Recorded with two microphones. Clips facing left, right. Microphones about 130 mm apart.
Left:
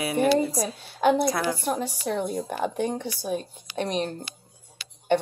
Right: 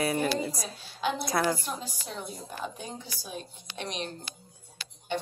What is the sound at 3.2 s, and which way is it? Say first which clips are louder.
Speech: left 11 dB; 50° left (ahead or behind).